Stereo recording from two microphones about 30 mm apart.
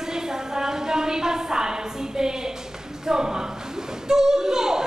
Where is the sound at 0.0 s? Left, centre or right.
Centre.